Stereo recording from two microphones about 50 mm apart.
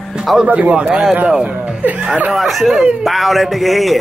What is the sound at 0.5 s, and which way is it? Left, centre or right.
Speech, right.